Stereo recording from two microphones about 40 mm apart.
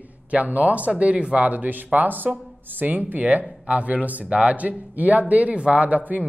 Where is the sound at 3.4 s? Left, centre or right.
Right.